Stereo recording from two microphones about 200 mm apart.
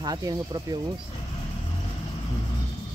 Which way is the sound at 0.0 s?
20° right (ahead or behind).